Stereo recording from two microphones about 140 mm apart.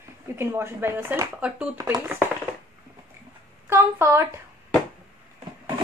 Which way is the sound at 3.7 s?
20° right (ahead or behind).